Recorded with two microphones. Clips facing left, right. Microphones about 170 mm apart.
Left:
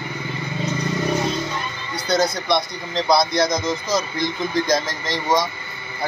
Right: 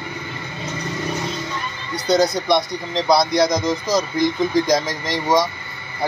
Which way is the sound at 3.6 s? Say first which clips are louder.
Right 3 dB; 35° right (ahead or behind).